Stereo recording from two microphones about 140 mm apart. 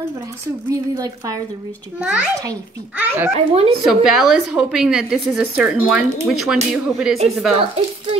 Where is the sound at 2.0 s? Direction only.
10° right (ahead or behind).